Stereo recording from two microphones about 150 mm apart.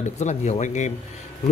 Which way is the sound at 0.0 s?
50° left (ahead or behind).